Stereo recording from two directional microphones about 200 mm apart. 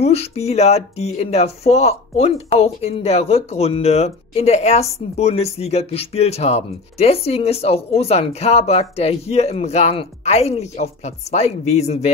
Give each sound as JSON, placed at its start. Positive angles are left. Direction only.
{"t": 0.0, "sound": "speech", "side_deg": 30}